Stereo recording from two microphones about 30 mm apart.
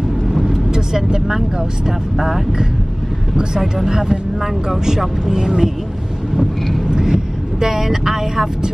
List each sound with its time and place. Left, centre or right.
0.3 s speech: centre
6.9 s vehicle: right
7.6 s speech: centre